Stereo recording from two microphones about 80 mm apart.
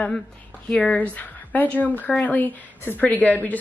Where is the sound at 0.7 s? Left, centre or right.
Centre.